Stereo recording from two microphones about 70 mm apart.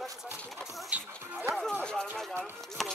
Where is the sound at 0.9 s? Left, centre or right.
Right.